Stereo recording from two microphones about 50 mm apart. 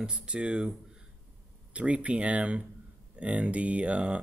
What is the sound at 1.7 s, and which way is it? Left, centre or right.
Speech, right.